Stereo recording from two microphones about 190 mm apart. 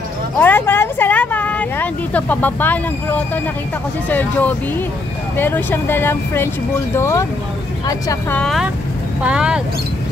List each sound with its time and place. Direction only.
0.4 s speech: 10° left (ahead or behind)
8.4 s speech: centre (ahead or behind)